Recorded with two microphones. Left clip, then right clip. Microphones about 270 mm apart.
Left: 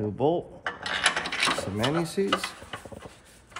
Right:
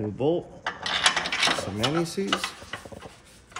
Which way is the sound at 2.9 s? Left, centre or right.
Centre.